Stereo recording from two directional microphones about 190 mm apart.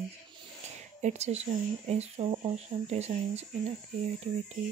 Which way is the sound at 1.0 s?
35° right (ahead or behind).